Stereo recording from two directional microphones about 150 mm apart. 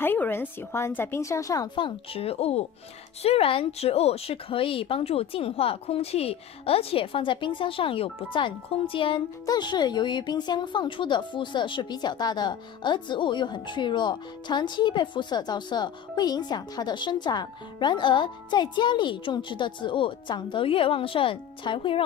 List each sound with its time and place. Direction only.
0.0 s a woman's voice: 15° left (ahead or behind); by 22.0 s 35° left (ahead or behind)